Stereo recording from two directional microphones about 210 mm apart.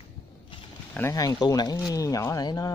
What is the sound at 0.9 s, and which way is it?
Speech, 15° left (ahead or behind).